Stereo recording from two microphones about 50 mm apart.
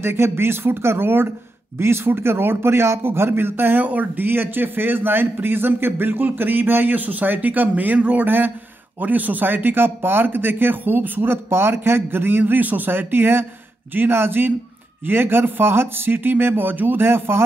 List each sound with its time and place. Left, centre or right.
0.0 s a man's voice: right
3.8 s a man's voice: right